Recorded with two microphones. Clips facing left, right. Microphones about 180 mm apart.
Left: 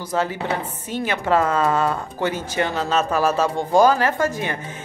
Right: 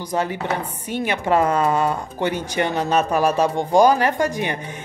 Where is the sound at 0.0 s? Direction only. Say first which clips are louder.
Even; 15° right (ahead or behind).